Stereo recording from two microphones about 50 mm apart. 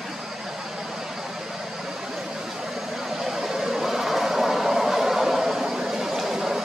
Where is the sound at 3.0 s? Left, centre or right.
Centre.